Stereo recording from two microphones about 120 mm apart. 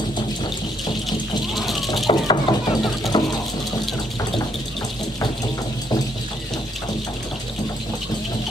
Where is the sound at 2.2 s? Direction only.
40° left (ahead or behind).